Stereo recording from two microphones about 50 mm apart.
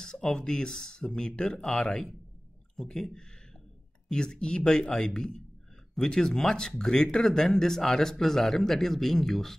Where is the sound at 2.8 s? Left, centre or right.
Centre.